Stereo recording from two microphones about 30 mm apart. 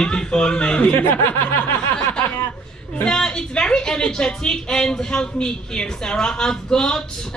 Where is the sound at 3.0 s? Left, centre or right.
Left.